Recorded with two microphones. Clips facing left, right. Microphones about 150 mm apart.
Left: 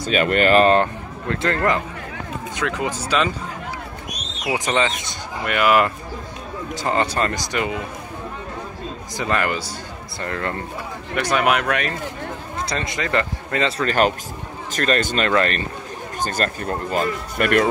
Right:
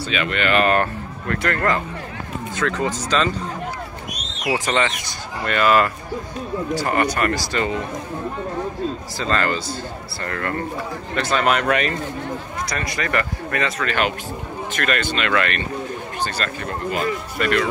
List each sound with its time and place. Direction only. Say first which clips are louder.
0.0 s speech: left 5 dB; 45° left (ahead or behind)
0.7 s speech: left 2 dB; 20° left (ahead or behind)
4.5 s speech: even; 20° left (ahead or behind)
9.2 s speech: even; 15° left (ahead or behind)
11.6 s speech: right 3 dB; centre (ahead or behind)
12.6 s speech: left 2 dB; 25° left (ahead or behind)
13.7 s speech: left 3 dB; 40° left (ahead or behind)
17.4 s speech: left 3 dB; 55° left (ahead or behind)